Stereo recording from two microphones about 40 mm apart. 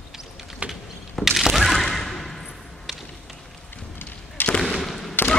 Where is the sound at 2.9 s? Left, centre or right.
Centre.